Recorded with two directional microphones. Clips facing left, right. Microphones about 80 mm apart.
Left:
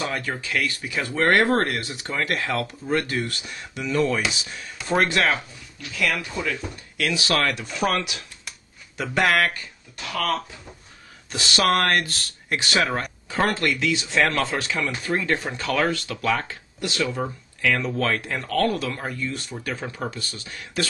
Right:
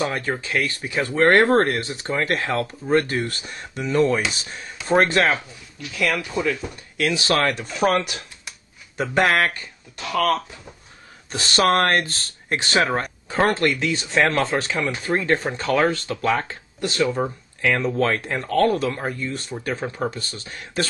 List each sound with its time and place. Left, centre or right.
0.0 s speech: right
11.3 s speech: right